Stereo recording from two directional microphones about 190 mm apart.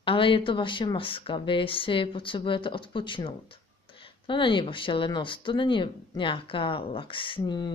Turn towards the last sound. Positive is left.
turn(degrees=25)  # may be behind; listen again after turning